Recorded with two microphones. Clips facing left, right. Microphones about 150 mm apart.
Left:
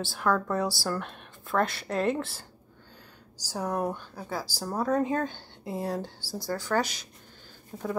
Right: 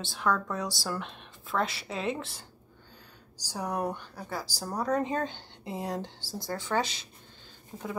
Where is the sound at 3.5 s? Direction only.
Centre (ahead or behind).